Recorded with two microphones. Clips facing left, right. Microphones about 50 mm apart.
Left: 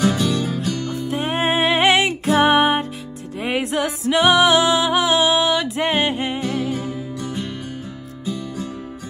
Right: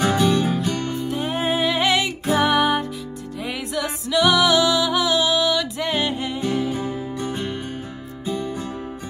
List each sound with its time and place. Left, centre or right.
0.0 s music: right
1.0 s music: left
7.2 s music: right